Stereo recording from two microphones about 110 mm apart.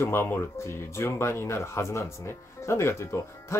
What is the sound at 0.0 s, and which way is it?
Speech, 20° left (ahead or behind).